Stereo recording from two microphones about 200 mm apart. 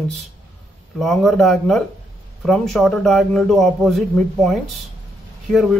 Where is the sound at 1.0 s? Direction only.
Centre (ahead or behind).